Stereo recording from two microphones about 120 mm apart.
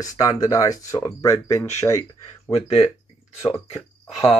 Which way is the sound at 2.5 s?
65° left (ahead or behind).